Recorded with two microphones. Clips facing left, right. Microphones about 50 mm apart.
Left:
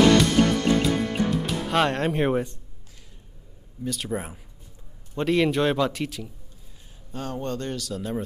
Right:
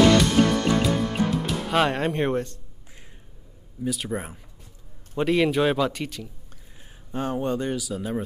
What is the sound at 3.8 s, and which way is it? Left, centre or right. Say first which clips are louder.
A man's voice: right 1 dB; centre.